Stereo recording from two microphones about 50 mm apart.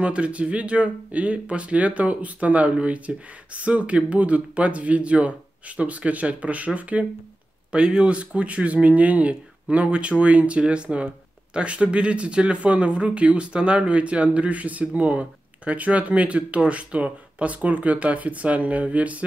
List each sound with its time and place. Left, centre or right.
0.0 s speech: right
7.7 s speech: centre